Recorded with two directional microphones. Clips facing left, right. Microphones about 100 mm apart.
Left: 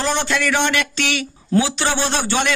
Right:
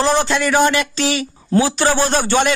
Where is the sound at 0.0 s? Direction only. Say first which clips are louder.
Right 4 dB; 35° right (ahead or behind).